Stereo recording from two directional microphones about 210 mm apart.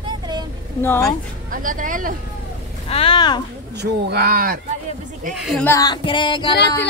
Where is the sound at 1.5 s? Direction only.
40° right (ahead or behind).